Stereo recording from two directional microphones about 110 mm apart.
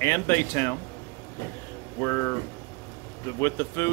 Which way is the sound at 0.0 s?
25° left (ahead or behind).